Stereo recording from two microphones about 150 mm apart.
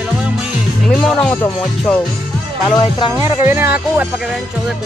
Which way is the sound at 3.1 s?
20° right (ahead or behind).